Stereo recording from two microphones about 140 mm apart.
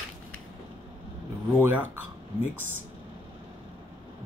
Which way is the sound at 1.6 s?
15° right (ahead or behind).